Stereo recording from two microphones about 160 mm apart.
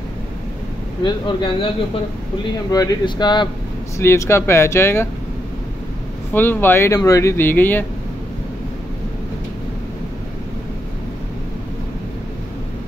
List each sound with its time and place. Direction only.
1.0 s speech: 30° left (ahead or behind)
2.7 s speech: 25° left (ahead or behind)
4.0 s speech: 15° left (ahead or behind)
6.3 s speech: 10° left (ahead or behind)